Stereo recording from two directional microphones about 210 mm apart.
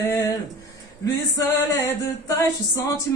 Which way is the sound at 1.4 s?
15° left (ahead or behind).